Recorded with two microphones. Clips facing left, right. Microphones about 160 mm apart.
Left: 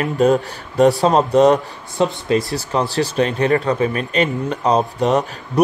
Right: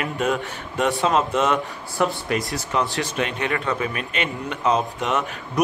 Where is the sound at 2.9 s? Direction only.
35° left (ahead or behind).